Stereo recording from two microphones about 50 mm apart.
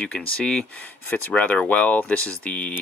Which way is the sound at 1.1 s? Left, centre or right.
Left.